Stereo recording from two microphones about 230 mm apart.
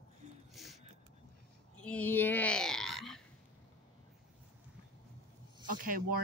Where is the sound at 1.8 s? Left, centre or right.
Centre.